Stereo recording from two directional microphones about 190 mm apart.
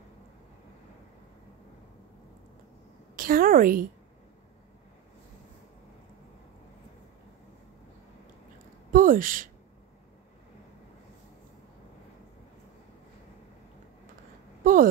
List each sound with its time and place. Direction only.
3.2 s a woman's voice: 50° right (ahead or behind)
8.9 s speech: 45° right (ahead or behind)
14.6 s a sound: 45° right (ahead or behind)